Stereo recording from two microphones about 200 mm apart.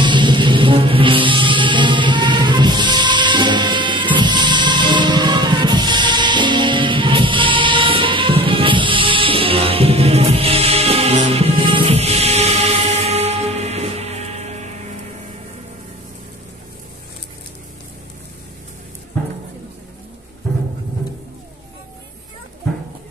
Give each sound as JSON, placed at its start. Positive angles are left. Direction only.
{"t": 0.0, "sound": "music", "side_deg": -25}